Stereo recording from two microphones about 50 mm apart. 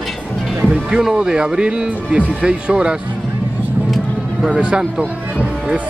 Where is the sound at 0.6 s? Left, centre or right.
Centre.